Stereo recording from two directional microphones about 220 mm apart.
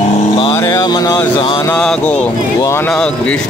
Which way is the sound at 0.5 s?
15° left (ahead or behind).